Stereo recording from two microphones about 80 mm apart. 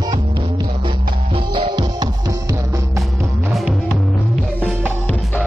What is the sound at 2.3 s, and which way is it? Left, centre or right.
Music, right.